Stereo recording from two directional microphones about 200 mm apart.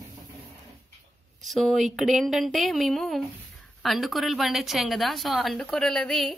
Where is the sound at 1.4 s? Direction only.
Centre (ahead or behind).